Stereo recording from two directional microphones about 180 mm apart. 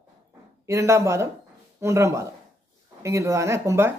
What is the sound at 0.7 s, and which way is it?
Speech, 15° right (ahead or behind).